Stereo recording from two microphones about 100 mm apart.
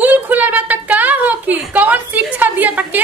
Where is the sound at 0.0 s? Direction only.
15° right (ahead or behind).